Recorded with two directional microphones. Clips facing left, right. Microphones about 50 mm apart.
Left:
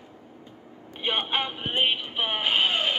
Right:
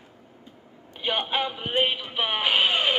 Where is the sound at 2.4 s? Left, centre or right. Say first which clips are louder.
Right 2 dB; right.